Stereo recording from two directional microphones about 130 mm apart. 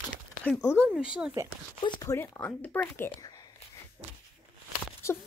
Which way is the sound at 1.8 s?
35° left (ahead or behind).